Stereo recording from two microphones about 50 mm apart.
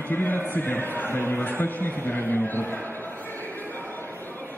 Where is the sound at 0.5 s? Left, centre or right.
Left.